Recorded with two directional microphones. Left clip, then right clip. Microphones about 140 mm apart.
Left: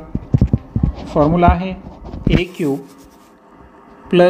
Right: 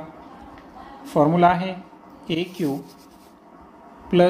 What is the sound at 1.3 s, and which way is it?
Speech, 25° left (ahead or behind).